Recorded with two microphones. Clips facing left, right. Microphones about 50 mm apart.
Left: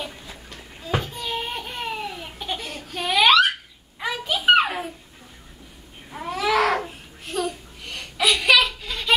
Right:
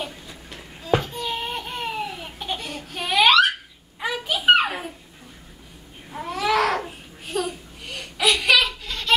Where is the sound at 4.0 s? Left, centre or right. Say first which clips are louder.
Even; centre.